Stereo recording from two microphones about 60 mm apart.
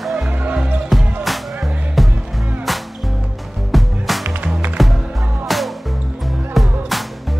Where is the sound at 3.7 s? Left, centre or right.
Centre.